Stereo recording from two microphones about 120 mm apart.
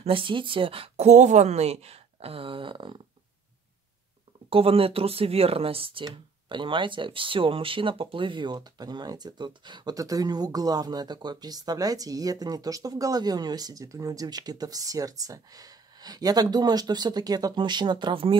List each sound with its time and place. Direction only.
0.0 s speech: 45° right (ahead or behind)
4.5 s speech: 50° right (ahead or behind)